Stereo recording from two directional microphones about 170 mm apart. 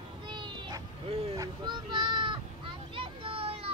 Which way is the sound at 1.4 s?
25° right (ahead or behind).